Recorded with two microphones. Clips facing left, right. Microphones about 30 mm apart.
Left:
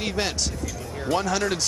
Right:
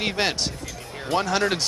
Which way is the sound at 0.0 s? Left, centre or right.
Right.